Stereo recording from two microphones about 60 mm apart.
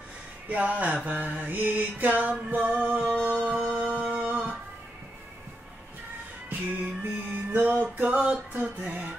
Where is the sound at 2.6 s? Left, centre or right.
Right.